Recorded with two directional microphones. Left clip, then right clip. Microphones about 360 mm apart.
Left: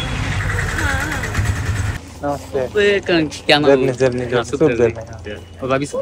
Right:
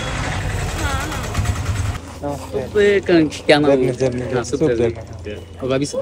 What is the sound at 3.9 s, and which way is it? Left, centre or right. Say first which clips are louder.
Speech: left 3 dB; centre.